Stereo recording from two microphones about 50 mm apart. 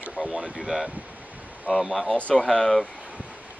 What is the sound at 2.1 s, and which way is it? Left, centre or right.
Speech, left.